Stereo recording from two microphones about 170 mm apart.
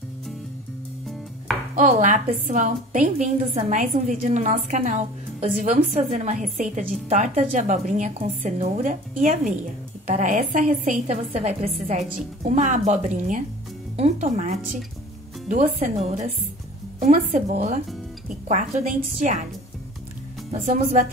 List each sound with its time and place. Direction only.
1.8 s a woman's voice: 45° right (ahead or behind)
20.6 s a woman's voice: 50° right (ahead or behind)